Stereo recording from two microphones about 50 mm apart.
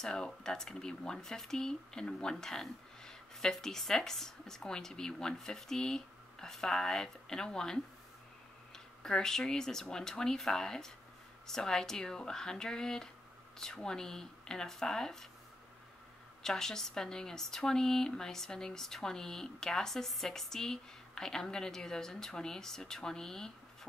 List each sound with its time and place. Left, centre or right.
0.0 s speech: centre
16.4 s speech: centre